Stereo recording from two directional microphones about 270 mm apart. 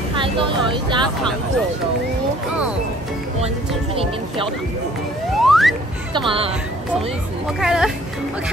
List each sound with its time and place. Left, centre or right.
0.2 s speech: centre
3.9 s speech: right
5.4 s a sound: centre
6.1 s speech: centre
7.6 s speech: centre